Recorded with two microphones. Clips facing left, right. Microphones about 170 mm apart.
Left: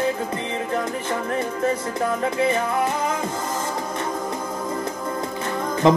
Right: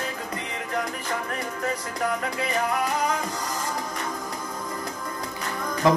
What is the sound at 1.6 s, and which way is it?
Music, 25° left (ahead or behind).